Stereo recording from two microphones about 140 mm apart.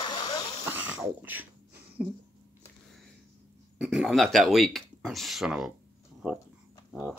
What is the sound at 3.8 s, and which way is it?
Speech, centre (ahead or behind).